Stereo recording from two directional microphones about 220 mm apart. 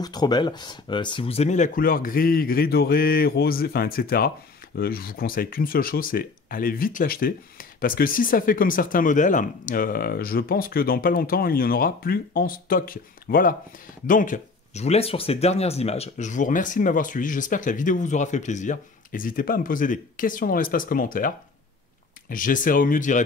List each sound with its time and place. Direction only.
0.0 s speech: 20° left (ahead or behind); by 21.3 s 40° left (ahead or behind)
22.3 s speech: 35° left (ahead or behind)